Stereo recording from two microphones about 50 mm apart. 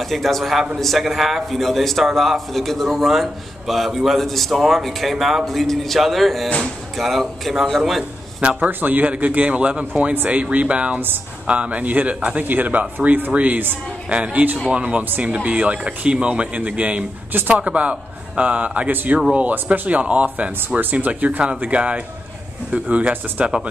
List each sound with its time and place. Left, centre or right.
0.0 s a man's voice: centre
8.5 s speech: right
12.4 s speech: right
17.3 s speech: right
17.6 s a man's voice: right